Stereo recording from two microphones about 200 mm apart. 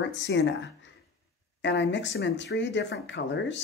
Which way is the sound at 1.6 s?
65° left (ahead or behind).